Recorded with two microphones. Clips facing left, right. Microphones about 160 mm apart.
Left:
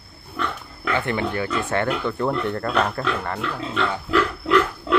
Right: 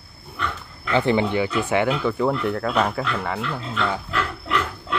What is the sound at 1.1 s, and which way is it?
Speech, 15° right (ahead or behind).